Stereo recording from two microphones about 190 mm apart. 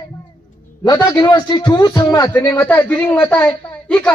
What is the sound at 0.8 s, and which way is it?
A man's voice, 20° left (ahead or behind).